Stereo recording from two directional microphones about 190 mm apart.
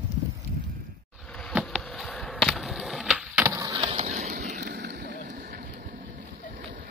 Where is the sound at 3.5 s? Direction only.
20° right (ahead or behind); by 5.9 s 50° right (ahead or behind).